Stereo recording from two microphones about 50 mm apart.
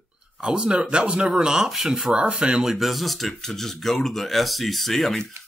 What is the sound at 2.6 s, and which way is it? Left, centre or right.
Speech, centre.